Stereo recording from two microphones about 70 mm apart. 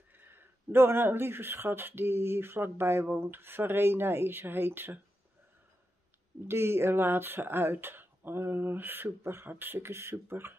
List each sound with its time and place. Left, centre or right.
0.1 s speech: right
6.4 s speech: right